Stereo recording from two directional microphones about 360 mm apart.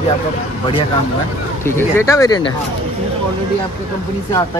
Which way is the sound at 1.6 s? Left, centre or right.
Centre.